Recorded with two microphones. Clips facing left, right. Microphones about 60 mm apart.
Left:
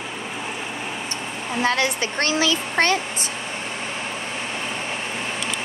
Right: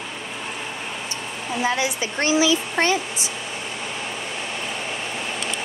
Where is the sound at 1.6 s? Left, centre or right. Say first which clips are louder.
Left 2 dB; left.